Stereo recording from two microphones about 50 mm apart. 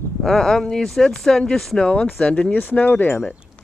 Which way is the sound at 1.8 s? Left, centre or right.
Centre.